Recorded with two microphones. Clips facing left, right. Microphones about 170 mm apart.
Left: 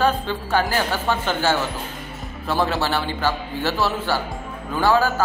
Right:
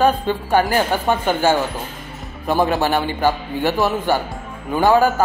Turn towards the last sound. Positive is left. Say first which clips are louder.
# right 4 dB
turn(degrees=-15)  # may be behind; listen again after turning